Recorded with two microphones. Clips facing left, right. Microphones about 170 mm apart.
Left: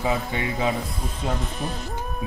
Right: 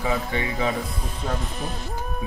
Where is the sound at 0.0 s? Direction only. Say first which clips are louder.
Even; 20° left (ahead or behind).